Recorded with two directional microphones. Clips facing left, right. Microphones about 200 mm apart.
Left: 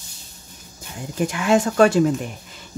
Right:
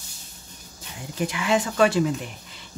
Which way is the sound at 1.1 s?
50° left (ahead or behind).